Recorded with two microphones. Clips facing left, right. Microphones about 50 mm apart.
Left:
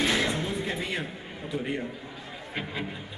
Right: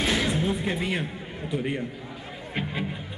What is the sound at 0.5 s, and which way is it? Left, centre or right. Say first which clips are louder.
Music: right 4 dB; centre.